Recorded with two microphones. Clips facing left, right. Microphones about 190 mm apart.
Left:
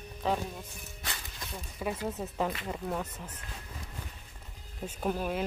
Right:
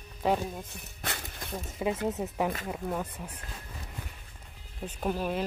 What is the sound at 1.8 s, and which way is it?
Speech, 20° right (ahead or behind).